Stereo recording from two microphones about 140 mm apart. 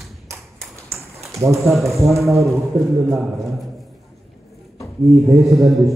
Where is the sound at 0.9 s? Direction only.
20° right (ahead or behind).